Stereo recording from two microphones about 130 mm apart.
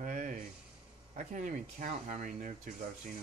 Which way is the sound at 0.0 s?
90° right.